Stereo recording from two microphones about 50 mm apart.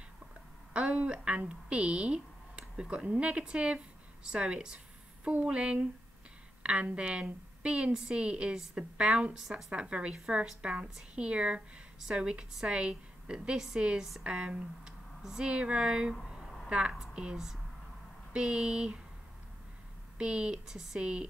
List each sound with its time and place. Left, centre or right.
0.7 s a woman's voice: right
20.2 s speech: centre